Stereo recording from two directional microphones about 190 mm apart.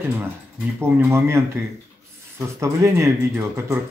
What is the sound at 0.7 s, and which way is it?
Speech, 15° right (ahead or behind).